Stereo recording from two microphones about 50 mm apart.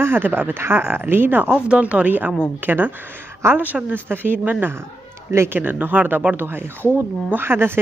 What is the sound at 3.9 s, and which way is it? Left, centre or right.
Speech, right.